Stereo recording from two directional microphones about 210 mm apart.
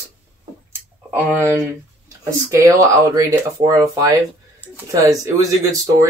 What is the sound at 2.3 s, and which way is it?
Speech, 15° right (ahead or behind).